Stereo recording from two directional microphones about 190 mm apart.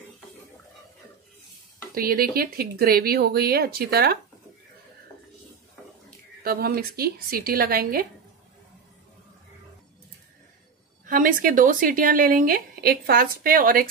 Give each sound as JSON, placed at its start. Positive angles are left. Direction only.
{"t": 2.0, "sound": "a woman's voice", "side_deg": -50}
{"t": 6.4, "sound": "a woman's voice", "side_deg": -50}
{"t": 11.1, "sound": "a woman's voice", "side_deg": -45}